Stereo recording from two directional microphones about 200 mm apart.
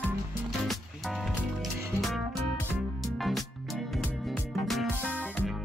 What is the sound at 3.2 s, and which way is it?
Music, centre (ahead or behind).